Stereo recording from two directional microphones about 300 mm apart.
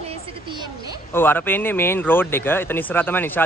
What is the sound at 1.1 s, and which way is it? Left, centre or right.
Speech, centre.